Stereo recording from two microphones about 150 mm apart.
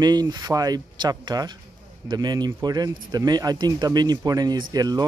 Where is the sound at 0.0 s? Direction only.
25° right (ahead or behind).